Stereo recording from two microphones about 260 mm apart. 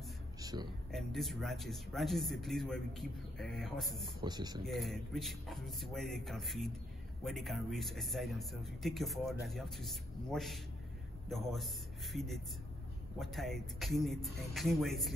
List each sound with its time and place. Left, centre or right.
0.4 s a sound: centre
0.9 s speech: centre
4.2 s speech: centre
4.6 s speech: centre